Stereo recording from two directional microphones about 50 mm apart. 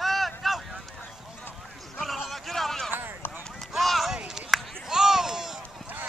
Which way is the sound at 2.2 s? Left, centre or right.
Centre.